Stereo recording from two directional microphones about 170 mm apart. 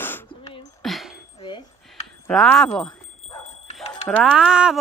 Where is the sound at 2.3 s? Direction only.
5° left (ahead or behind).